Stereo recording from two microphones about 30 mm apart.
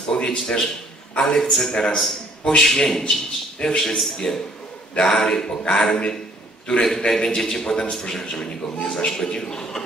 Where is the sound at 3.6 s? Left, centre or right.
Left.